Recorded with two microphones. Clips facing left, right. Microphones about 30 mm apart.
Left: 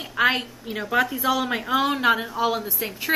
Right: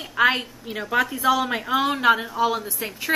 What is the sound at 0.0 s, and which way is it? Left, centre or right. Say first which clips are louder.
A woman's voice: right 1 dB; centre.